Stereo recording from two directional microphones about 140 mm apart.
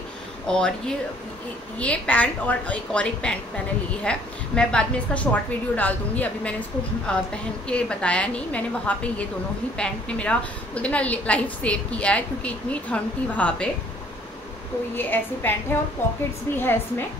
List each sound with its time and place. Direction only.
0.5 s a woman's voice: 5° left (ahead or behind)
15.0 s a woman's voice: 15° left (ahead or behind)